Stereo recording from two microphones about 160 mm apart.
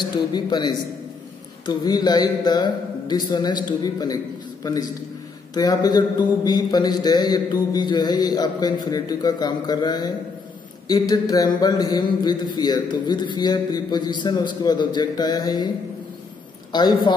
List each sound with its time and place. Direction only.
0.0 s a man's voice: 25° left (ahead or behind)
16.7 s a man's voice: 25° left (ahead or behind)